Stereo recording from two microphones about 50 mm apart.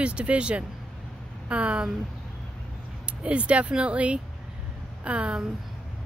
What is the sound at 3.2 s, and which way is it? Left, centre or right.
Speech, right.